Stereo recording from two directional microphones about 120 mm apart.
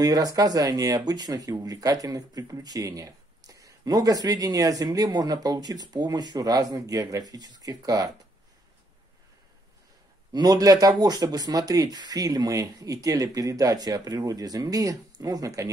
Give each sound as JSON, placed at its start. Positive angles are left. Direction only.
{"t": 0.0, "sound": "speech", "side_deg": -30}
{"t": 10.3, "sound": "speech", "side_deg": -30}